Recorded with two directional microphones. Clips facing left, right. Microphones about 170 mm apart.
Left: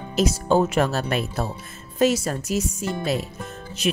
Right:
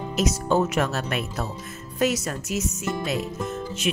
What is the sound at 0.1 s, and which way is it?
Speech, 30° left (ahead or behind).